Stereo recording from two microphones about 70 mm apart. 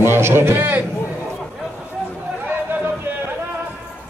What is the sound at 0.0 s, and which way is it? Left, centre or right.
Speech, right.